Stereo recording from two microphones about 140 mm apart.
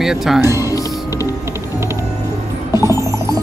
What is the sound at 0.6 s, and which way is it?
Music, 25° left (ahead or behind).